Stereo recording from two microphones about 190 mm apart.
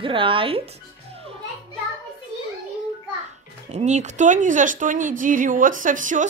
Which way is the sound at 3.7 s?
35° right (ahead or behind).